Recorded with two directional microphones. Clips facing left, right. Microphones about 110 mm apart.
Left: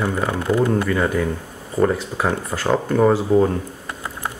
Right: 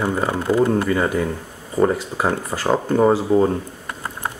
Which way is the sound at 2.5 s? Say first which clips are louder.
Even; 5° right (ahead or behind).